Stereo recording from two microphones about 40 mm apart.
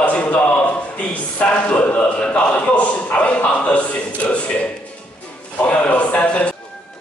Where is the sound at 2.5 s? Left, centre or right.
Left.